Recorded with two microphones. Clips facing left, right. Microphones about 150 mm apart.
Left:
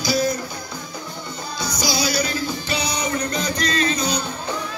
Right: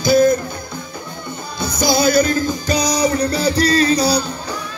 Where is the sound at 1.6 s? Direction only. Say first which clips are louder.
Right 8 dB; 55° right (ahead or behind).